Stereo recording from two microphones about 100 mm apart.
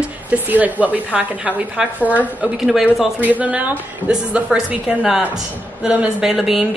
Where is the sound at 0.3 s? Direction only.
15° right (ahead or behind).